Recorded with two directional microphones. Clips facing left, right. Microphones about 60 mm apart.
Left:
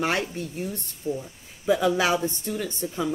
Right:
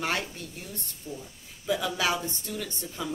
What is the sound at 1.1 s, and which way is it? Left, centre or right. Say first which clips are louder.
Speech: left 11 dB; left.